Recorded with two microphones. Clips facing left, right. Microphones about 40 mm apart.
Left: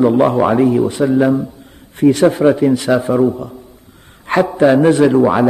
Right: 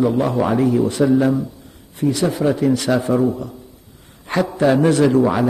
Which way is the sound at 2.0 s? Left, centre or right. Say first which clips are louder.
Left 8 dB; left.